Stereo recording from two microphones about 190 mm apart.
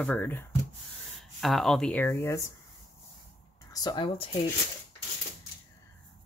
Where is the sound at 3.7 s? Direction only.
25° left (ahead or behind).